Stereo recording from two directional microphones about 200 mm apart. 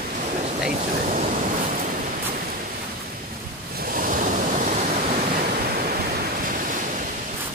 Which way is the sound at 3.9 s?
45° right (ahead or behind).